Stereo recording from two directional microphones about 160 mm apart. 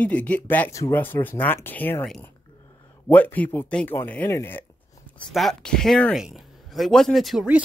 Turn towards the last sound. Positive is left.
turn(degrees=-5)  # may be behind; listen again after turning